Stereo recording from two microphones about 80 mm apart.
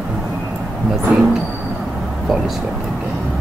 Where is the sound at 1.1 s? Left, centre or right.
Centre.